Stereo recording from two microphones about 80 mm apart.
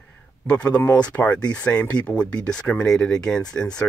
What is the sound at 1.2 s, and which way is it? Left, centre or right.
Speech, left.